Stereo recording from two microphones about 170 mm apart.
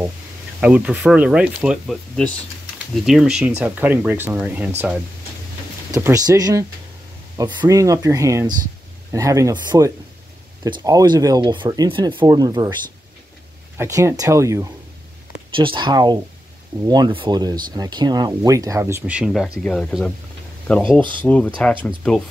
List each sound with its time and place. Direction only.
0.6 s speech: 5° right (ahead or behind)
5.9 s speech: 20° right (ahead or behind)
13.7 s speech: 15° right (ahead or behind)
15.5 s speech: 30° right (ahead or behind); by 20.8 s 5° left (ahead or behind)
21.0 s speech: 30° right (ahead or behind)
21.8 s speech: centre (ahead or behind)